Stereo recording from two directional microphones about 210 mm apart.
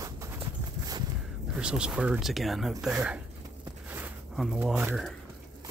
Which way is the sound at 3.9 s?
5° right (ahead or behind).